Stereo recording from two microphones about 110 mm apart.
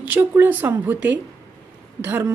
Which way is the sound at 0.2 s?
20° right (ahead or behind).